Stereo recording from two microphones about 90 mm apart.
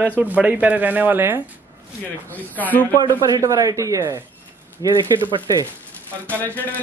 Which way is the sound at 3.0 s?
40° right (ahead or behind).